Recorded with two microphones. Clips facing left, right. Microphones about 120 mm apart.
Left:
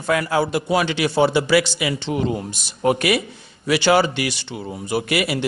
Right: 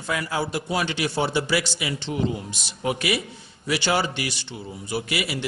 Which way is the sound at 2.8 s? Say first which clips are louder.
Left 7 dB; 55° left (ahead or behind).